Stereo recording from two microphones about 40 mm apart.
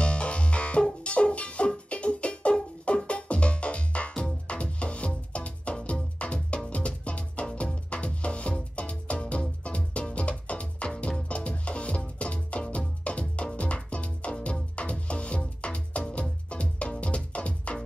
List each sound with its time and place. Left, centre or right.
0.0 s music: left